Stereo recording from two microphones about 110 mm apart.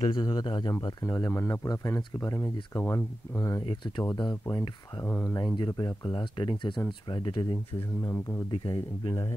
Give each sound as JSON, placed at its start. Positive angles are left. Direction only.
{"t": 0.0, "sound": "speech", "side_deg": 40}
{"t": 1.3, "sound": "speech", "side_deg": 25}
{"t": 3.6, "sound": "speech", "side_deg": 45}
{"t": 5.0, "sound": "speech", "side_deg": 20}
{"t": 5.6, "sound": "speech", "side_deg": 40}
{"t": 8.0, "sound": "speech", "side_deg": 30}
{"t": 8.5, "sound": "speech", "side_deg": 50}